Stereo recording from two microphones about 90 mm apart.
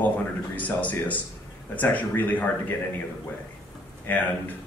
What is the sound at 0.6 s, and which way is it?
Speech, 20° left (ahead or behind).